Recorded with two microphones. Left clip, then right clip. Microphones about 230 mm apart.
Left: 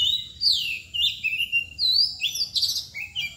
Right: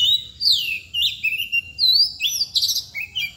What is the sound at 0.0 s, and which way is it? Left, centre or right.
Bird, right.